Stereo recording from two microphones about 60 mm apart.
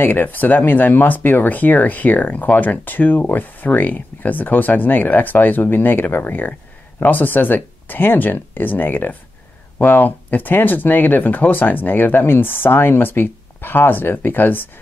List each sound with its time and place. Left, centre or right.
0.0 s speech: left